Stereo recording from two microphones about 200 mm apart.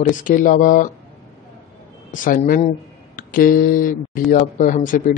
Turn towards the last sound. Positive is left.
turn(degrees=40)  # may be behind; listen again after turning